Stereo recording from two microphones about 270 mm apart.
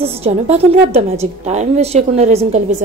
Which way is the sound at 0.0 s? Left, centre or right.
Right.